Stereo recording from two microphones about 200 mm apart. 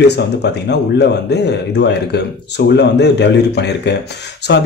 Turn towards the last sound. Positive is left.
turn(degrees=55)  # may be behind; listen again after turning